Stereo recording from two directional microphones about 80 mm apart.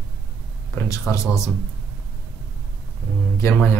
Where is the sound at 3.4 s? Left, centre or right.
Left.